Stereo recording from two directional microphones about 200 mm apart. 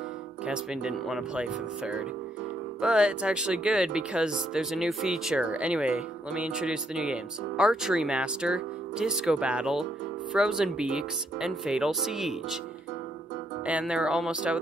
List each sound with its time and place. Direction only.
0.5 s speech: 5° right (ahead or behind)
13.7 s speech: 5° right (ahead or behind)